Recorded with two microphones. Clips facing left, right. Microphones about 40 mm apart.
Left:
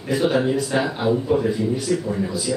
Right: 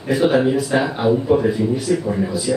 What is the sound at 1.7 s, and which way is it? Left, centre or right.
Speech, centre.